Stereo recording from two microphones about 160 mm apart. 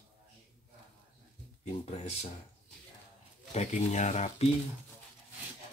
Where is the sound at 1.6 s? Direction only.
45° left (ahead or behind).